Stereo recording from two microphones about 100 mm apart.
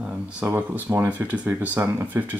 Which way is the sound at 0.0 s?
20° right (ahead or behind).